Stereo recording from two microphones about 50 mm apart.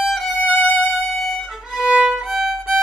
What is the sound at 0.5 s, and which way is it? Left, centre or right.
Violin, left.